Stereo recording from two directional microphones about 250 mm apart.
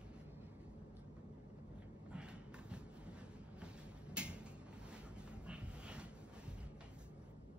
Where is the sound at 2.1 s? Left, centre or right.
Centre.